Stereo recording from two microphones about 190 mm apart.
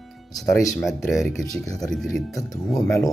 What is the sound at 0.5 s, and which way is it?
Speech, 15° left (ahead or behind).